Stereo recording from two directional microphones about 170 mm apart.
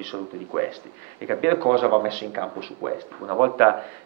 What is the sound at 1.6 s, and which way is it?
Speech, 30° right (ahead or behind).